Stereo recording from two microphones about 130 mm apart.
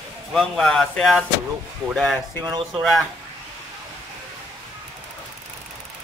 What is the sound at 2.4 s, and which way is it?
Speech, 30° right (ahead or behind).